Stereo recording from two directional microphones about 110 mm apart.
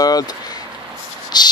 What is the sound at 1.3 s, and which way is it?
Speech, 40° left (ahead or behind).